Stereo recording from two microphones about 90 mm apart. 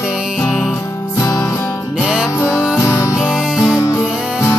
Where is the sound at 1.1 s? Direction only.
35° left (ahead or behind).